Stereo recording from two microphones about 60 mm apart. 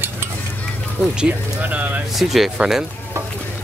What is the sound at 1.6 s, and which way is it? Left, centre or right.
Speech, right.